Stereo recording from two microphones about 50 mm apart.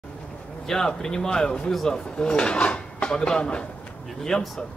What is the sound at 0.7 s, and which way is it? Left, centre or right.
Speech, centre.